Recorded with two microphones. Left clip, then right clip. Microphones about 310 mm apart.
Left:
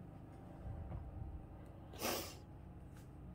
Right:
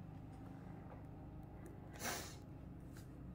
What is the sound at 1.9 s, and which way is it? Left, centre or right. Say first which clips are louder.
Snort: left 4 dB; centre.